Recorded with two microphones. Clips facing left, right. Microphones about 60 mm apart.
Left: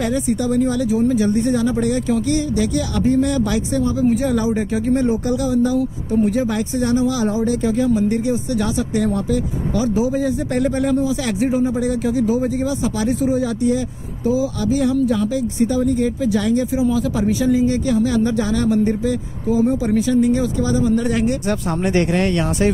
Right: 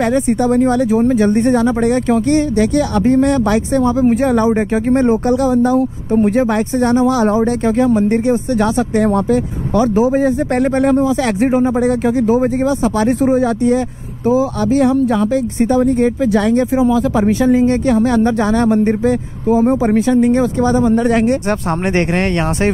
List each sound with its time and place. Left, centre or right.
0.0 s speech: right